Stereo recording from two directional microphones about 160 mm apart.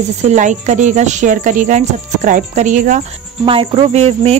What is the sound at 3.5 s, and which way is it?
Cricket, 35° right (ahead or behind).